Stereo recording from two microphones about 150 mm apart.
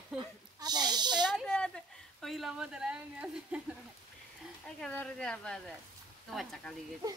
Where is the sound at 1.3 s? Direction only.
5° left (ahead or behind).